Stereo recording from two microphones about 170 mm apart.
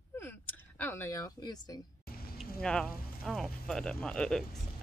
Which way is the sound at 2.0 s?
65° left (ahead or behind).